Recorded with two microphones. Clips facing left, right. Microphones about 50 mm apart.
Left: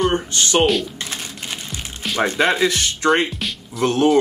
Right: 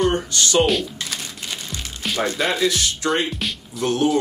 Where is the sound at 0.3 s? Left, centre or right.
Left.